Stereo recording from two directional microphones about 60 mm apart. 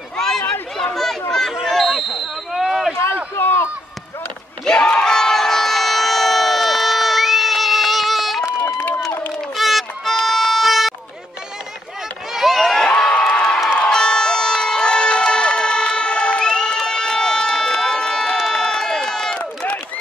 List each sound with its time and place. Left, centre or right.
1.7 s a sound: centre
3.3 s run: left
4.6 s crowd: centre
8.5 s run: left
9.6 s music: centre
12.3 s crowd: centre
18.5 s run: centre
19.3 s run: centre